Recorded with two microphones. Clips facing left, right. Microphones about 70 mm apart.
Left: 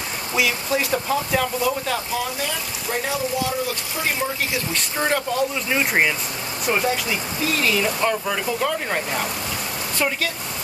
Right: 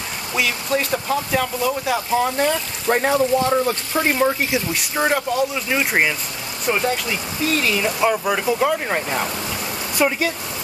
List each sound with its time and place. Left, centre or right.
0.3 s speech: centre
2.1 s speech: right
4.7 s speech: centre